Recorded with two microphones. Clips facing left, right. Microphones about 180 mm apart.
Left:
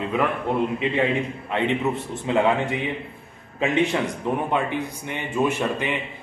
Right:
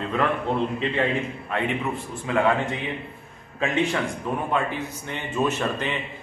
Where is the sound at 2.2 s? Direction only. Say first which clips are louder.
Left 2 dB; 25° left (ahead or behind).